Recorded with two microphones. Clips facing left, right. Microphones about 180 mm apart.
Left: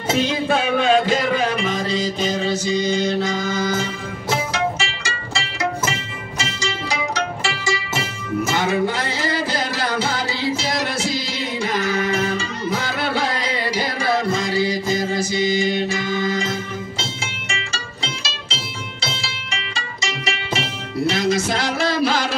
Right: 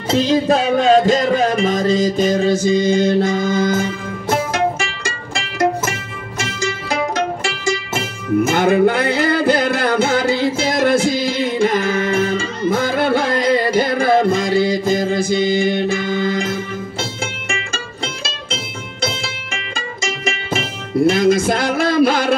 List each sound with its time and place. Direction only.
0.1 s music: 35° right (ahead or behind); by 16.5 s 55° right (ahead or behind)
18.0 s music: 50° right (ahead or behind)